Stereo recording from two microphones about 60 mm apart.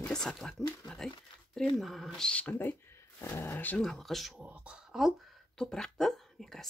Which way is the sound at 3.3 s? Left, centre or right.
Left.